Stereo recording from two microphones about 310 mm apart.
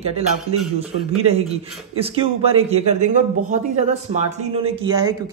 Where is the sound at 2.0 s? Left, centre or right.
Centre.